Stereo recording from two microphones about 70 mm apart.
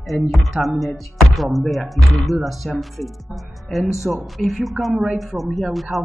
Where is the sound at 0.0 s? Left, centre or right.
Centre.